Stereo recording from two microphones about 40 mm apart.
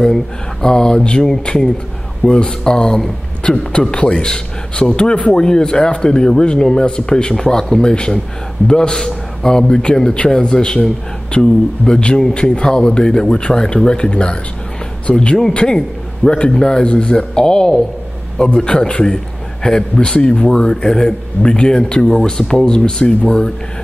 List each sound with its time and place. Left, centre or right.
0.0 s a man's voice: centre; by 15.2 s left
16.3 s speech: left